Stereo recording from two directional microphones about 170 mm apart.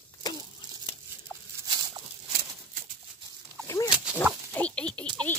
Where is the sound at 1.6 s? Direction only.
25° right (ahead or behind).